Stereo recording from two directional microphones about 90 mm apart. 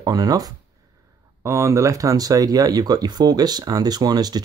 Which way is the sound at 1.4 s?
30° right (ahead or behind).